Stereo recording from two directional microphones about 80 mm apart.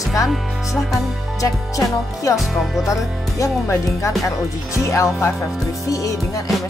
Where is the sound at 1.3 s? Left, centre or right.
Left.